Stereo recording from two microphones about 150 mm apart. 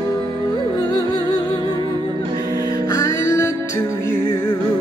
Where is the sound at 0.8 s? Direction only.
25° left (ahead or behind).